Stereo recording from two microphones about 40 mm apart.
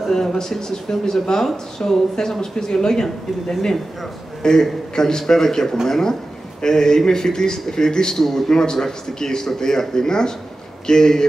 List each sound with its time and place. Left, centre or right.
0.1 s a man's voice: centre